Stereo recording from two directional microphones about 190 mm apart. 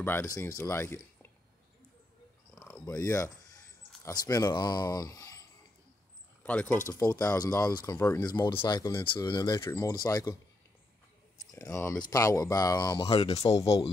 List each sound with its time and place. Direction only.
0.0 s speech: 10° left (ahead or behind)
2.5 s a sound: 10° left (ahead or behind)
4.0 s speech: 20° left (ahead or behind)
6.4 s speech: 10° left (ahead or behind)
6.9 s speech: 20° left (ahead or behind)
11.5 s speech: 15° left (ahead or behind); by 13.6 s 30° left (ahead or behind)